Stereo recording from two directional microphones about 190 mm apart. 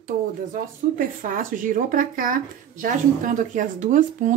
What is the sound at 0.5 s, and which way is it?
Speech, 45° right (ahead or behind).